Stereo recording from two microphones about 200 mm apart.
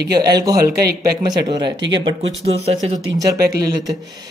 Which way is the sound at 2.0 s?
30° right (ahead or behind).